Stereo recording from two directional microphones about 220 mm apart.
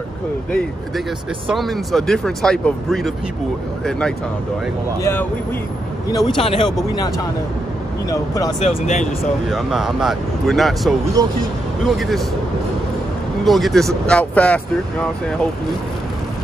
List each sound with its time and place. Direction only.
1.5 s speech: centre (ahead or behind)
6.1 s speech: 20° left (ahead or behind)
8.1 s speech: 15° left (ahead or behind)
8.6 s speech: 35° left (ahead or behind)
9.2 s speech: centre (ahead or behind)
11.2 s speech: 15° right (ahead or behind)
11.8 s speech: centre (ahead or behind)
13.5 s speech: centre (ahead or behind)